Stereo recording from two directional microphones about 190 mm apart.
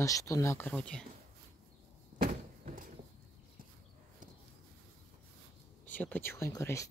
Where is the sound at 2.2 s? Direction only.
45° right (ahead or behind).